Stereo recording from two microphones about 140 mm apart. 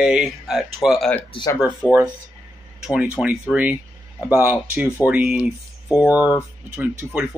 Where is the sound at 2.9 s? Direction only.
10° right (ahead or behind).